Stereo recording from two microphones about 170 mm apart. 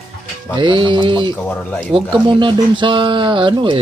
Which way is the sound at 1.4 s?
10° left (ahead or behind).